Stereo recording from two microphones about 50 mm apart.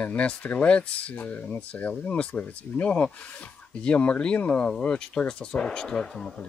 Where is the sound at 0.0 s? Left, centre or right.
Left.